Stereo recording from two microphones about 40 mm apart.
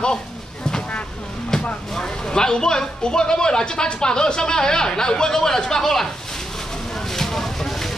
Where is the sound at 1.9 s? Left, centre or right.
Centre.